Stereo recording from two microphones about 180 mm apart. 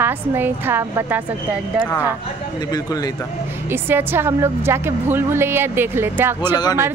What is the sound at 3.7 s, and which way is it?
A woman's voice, 10° right (ahead or behind).